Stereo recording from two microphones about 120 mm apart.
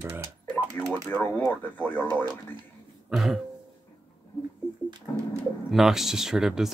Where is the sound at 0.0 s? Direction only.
15° right (ahead or behind).